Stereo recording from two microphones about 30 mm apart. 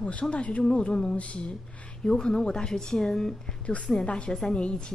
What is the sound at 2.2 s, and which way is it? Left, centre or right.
A woman's voice, left.